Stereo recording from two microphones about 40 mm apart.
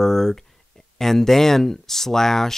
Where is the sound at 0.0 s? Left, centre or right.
Centre.